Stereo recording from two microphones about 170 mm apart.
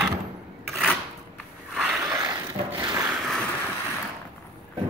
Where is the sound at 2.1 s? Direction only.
20° right (ahead or behind).